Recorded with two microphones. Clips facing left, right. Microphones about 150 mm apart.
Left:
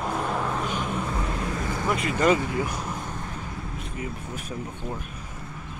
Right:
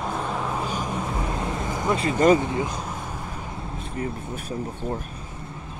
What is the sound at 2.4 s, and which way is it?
Speech, 25° right (ahead or behind).